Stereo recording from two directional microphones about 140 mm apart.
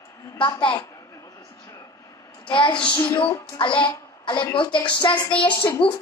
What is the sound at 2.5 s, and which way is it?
A woman's voice, 35° left (ahead or behind).